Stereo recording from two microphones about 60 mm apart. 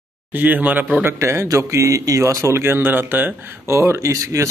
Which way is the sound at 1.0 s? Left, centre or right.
Right.